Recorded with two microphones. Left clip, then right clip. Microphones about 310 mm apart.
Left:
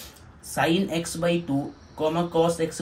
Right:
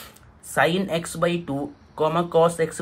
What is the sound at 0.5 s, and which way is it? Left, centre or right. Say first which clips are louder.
Speech: right 3 dB; right.